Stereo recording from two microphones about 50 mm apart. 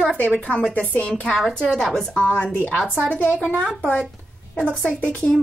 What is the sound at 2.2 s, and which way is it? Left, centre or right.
Speech, left.